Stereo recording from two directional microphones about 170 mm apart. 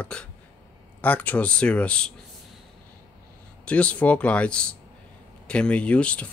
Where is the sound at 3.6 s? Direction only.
5° left (ahead or behind).